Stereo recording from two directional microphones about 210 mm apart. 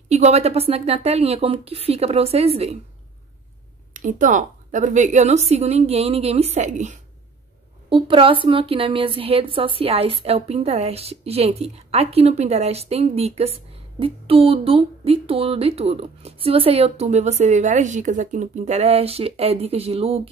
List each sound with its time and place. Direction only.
0.1 s speech: 30° right (ahead or behind)
3.9 s a woman's voice: 35° right (ahead or behind)